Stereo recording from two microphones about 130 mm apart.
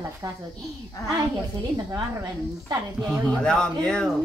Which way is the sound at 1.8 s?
35° right (ahead or behind).